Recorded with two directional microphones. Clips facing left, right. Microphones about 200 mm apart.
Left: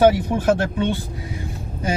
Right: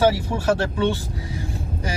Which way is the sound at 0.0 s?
20° left (ahead or behind).